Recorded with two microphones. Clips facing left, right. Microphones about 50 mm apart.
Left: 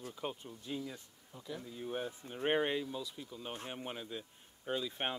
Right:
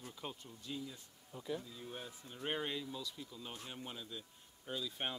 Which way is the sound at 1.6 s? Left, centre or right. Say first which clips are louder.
Left 8 dB; left.